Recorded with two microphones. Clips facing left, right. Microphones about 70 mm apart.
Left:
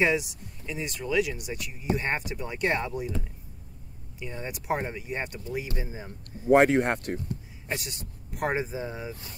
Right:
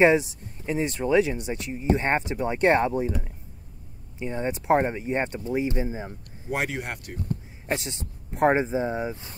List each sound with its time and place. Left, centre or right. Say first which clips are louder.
0.0 s speech: right 6 dB; right
4.2 s speech: right 8 dB; right
6.5 s speech: left 10 dB; left
7.7 s speech: right 5 dB; right